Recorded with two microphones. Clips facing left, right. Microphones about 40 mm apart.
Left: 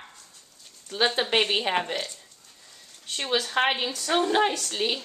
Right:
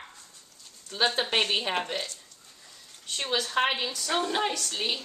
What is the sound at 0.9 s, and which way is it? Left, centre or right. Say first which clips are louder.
A woman's voice: left 2 dB; centre.